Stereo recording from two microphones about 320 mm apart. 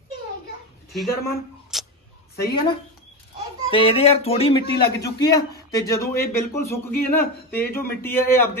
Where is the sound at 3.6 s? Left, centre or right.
Centre.